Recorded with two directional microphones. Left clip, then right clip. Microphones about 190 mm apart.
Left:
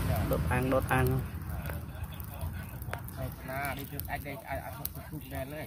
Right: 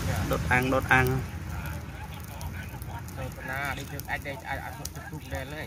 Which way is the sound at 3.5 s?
45° left (ahead or behind).